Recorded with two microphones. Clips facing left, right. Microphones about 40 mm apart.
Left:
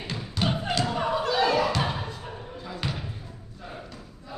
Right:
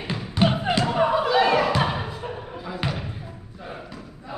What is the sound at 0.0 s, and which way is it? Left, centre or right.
Thump, right.